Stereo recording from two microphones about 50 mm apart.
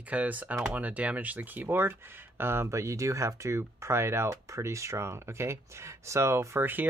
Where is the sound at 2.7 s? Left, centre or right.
Right.